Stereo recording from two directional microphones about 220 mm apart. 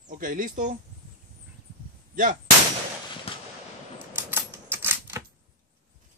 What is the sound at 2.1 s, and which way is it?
Speech, 40° right (ahead or behind).